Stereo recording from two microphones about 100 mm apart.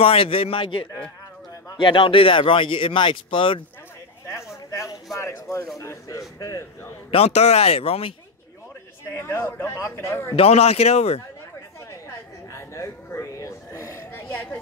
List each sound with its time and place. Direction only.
0.0 s a man's voice: 70° left (ahead or behind)
4.6 s a sound: 35° left (ahead or behind)
5.1 s speech: 30° left (ahead or behind)
7.1 s speech: 85° left
9.1 s a man's voice: 25° left (ahead or behind)
10.3 s speech: 85° left
12.5 s a sound: 30° left (ahead or behind)